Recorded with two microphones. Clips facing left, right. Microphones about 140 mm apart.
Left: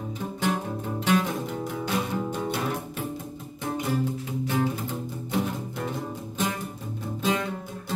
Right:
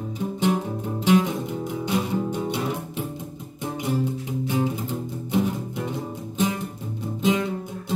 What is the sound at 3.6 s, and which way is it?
Music, 15° right (ahead or behind).